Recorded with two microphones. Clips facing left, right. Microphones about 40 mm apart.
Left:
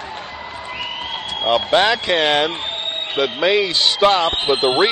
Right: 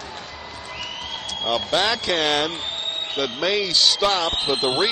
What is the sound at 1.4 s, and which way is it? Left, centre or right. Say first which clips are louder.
Speech: left 6 dB; left.